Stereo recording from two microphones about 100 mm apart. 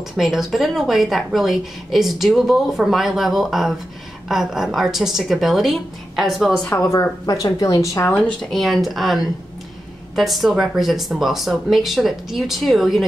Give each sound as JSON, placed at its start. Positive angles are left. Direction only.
{"t": 0.2, "sound": "a woman's voice", "side_deg": -5}
{"t": 6.7, "sound": "a woman's voice", "side_deg": 30}
{"t": 8.4, "sound": "a woman's voice", "side_deg": 0}